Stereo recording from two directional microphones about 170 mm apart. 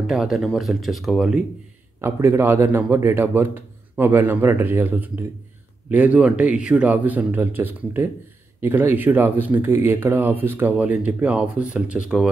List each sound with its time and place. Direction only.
0.0 s speech: centre (ahead or behind)
2.0 s speech: 15° right (ahead or behind)